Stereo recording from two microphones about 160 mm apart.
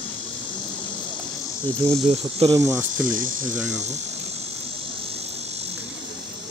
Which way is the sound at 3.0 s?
60° right (ahead or behind).